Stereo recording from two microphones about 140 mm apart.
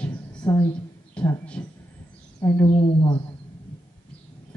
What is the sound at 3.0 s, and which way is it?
Speech, 40° left (ahead or behind).